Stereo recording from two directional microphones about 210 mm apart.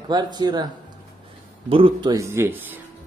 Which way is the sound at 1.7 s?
25° right (ahead or behind).